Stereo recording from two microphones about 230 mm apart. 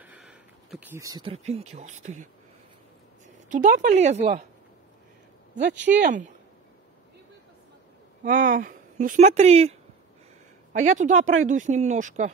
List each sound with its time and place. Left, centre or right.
0.0 s speech: centre; by 2.2 s right
3.4 s a woman's voice: right
6.0 s a woman's voice: right
8.2 s a woman's voice: right